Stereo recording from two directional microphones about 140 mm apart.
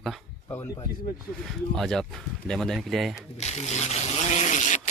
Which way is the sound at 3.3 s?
55° left (ahead or behind).